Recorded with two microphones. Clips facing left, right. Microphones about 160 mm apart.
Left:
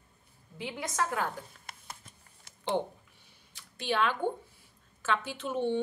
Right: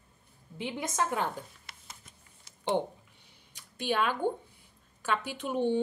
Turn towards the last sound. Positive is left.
turn(degrees=-15)  # may be behind; listen again after turning